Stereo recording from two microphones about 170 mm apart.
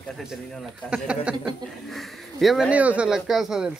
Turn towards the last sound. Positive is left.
turn(degrees=-5)  # may be behind; listen again after turning